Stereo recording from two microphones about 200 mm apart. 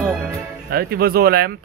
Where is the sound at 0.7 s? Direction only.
50° right (ahead or behind).